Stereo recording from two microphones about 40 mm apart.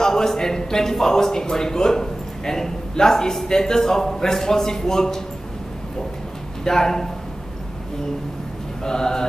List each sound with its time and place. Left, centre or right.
0.0 s a man's voice: centre
6.6 s a man's voice: centre
8.8 s a man's voice: centre